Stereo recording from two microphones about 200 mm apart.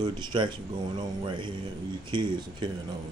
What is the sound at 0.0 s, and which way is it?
Speech, 20° right (ahead or behind).